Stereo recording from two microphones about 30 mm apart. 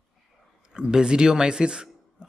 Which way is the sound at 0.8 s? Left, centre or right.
Right.